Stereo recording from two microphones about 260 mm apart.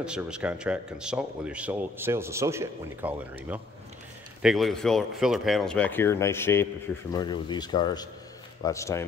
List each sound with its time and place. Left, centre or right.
0.0 s speech: centre